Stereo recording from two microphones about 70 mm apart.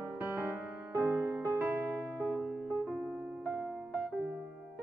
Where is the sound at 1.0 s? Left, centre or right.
Right.